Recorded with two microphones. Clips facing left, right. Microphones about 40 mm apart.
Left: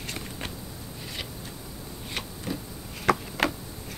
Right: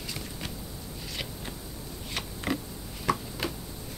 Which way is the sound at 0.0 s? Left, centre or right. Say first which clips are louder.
Left 2 dB; left.